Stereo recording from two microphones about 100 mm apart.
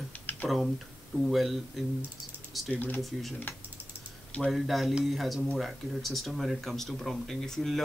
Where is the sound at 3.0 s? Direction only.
Centre (ahead or behind).